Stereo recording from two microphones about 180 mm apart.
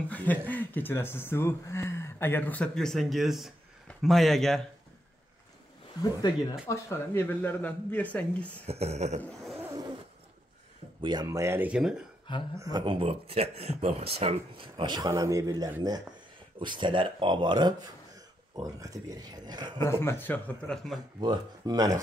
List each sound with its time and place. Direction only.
0.1 s speech: 10° left (ahead or behind)
6.7 s speech: 15° left (ahead or behind)
8.6 s speech: 35° right (ahead or behind)
9.2 s roaring cats: centre (ahead or behind)
9.6 s a sound: 15° right (ahead or behind)
11.0 s speech: 25° right (ahead or behind); by 12.0 s 5° right (ahead or behind)
12.5 s speech: 20° right (ahead or behind)
19.8 s speech: 15° left (ahead or behind)
21.2 s speech: 20° right (ahead or behind)